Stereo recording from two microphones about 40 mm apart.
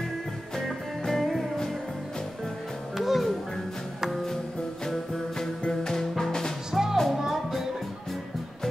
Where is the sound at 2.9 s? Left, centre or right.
Centre.